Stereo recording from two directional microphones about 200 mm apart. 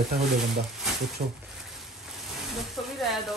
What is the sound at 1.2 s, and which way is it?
Speech, 40° right (ahead or behind).